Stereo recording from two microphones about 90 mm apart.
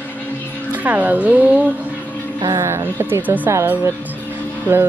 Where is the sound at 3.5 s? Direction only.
30° right (ahead or behind).